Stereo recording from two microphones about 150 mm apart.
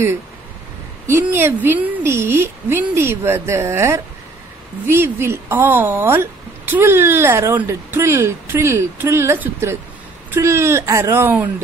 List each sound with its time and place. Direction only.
1.0 s speech: 15° right (ahead or behind)